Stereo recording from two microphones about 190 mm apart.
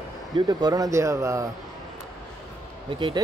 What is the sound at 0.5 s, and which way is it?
Speech, 20° right (ahead or behind).